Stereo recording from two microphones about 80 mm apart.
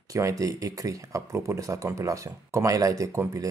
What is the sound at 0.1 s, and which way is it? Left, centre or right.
Speech, right.